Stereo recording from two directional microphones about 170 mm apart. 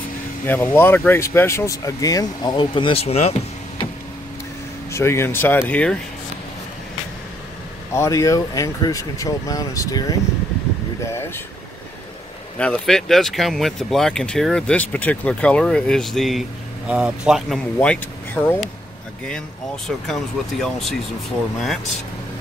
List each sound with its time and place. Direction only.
0.5 s speech: 15° left (ahead or behind); by 3.8 s 40° left (ahead or behind)
4.9 s speech: 15° left (ahead or behind)
7.9 s speech: 20° left (ahead or behind)
11.1 s speech: 15° left (ahead or behind)
12.5 s speech: 5° left (ahead or behind)
17.7 s speech: 10° left (ahead or behind)
20.1 s speech: centre (ahead or behind)